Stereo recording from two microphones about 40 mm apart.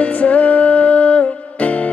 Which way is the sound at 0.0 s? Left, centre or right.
Left.